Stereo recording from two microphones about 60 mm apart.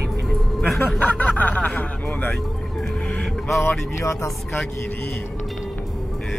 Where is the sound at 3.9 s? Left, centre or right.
Left.